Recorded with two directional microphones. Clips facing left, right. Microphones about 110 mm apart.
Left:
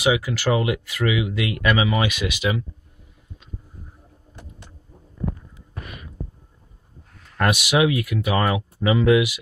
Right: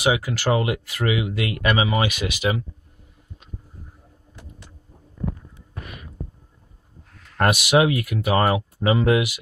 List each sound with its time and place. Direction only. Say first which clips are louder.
0.0 s speech: left 1 dB; 40° right (ahead or behind)
7.3 s speech: right 2 dB; 45° right (ahead or behind)